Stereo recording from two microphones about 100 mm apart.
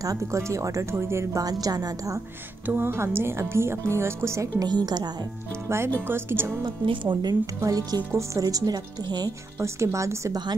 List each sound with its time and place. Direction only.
0.0 s speech: 35° right (ahead or behind)
1.4 s speech: 40° right (ahead or behind)
2.6 s speech: 20° right (ahead or behind)
4.8 s speech: 45° right (ahead or behind)
5.9 s speech: 25° right (ahead or behind)
6.6 s speech: 50° right (ahead or behind)
9.8 s speech: 30° right (ahead or behind)